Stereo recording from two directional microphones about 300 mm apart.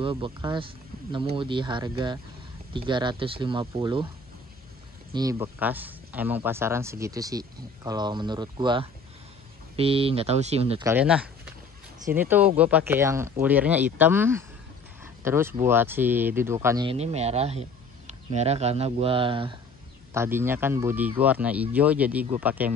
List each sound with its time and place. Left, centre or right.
0.0 s speech: centre
5.1 s speech: centre
10.9 s speech: centre